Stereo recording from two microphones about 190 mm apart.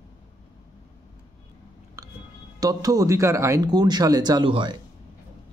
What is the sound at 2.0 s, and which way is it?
Music, 15° right (ahead or behind).